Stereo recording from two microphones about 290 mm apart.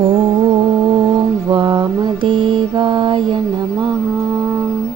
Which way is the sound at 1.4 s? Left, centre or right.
Centre.